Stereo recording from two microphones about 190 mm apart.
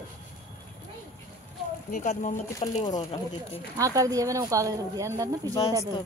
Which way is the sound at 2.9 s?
25° left (ahead or behind).